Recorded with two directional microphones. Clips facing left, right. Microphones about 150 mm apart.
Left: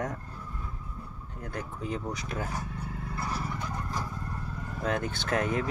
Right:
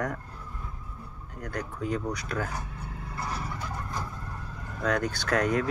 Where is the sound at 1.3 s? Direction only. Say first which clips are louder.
Right 3 dB; 25° left (ahead or behind).